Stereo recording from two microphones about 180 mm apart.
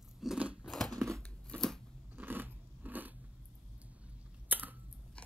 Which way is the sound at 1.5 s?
5° left (ahead or behind).